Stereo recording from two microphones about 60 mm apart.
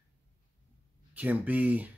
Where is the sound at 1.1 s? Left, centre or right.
Right.